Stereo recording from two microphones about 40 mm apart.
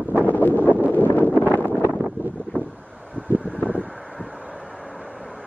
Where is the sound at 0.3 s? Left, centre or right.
Left.